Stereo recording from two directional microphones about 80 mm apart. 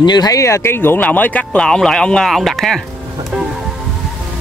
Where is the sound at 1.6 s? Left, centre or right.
Centre.